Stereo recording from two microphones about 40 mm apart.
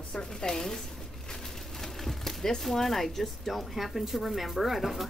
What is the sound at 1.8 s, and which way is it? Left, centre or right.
Speech, centre.